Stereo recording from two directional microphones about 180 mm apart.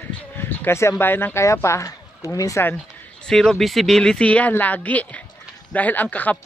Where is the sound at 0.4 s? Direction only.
10° left (ahead or behind).